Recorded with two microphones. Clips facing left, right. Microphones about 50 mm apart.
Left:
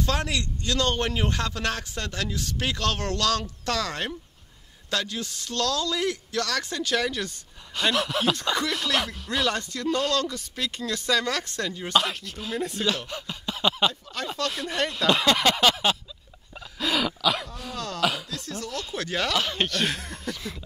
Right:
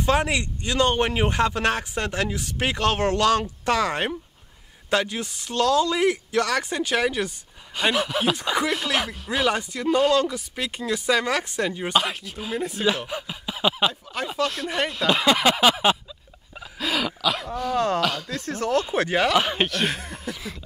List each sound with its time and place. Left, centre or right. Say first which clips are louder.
0.0 s a man's voice: right 5 dB; right
14.5 s a man's voice: right 2 dB; centre
16.5 s dog: even; centre
17.7 s a man's voice: right 4 dB; right
19.7 s a sound: right 2 dB; centre